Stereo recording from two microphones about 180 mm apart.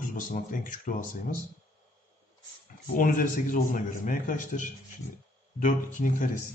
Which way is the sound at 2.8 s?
50° left (ahead or behind).